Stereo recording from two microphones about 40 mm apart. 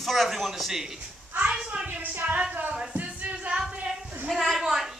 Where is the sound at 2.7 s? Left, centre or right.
Right.